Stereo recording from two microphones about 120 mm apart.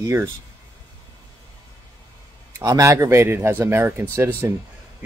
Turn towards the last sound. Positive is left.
turn(degrees=-25)  # may be behind; listen again after turning